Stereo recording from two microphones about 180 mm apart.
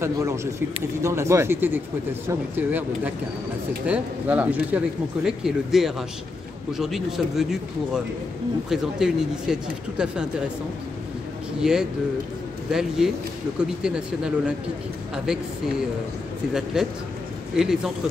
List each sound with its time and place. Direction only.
0.0 s speech: 15° right (ahead or behind)
8.6 s speech: 5° right (ahead or behind)
11.6 s speech: 5° right (ahead or behind)
16.8 s speech: 5° right (ahead or behind)